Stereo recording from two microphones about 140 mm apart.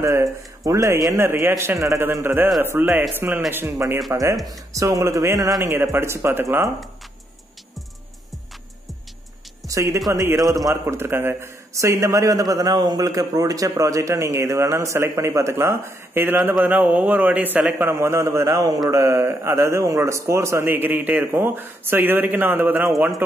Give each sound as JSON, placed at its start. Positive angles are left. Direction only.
{"t": 0.0, "sound": "a man's voice", "side_deg": -20}
{"t": 9.7, "sound": "a man's voice", "side_deg": -25}